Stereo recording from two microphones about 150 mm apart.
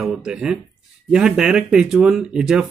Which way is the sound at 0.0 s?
5° right (ahead or behind).